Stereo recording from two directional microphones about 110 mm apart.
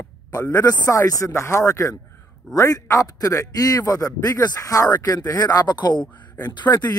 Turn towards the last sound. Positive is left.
turn(degrees=35)  # may be behind; listen again after turning